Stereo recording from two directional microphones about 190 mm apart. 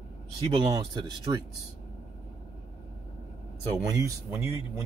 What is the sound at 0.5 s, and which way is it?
Speech, 25° right (ahead or behind).